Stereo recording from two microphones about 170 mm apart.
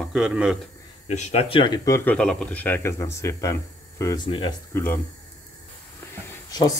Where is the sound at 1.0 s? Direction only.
40° left (ahead or behind).